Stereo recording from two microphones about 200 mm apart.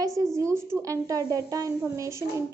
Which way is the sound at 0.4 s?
15° right (ahead or behind).